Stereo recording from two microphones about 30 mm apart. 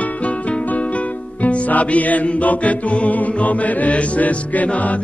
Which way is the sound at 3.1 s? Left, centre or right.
Left.